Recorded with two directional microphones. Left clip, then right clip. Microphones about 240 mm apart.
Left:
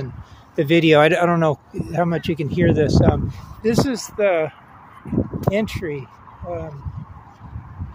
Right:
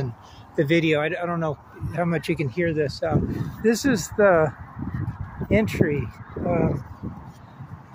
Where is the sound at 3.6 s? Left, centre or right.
Centre.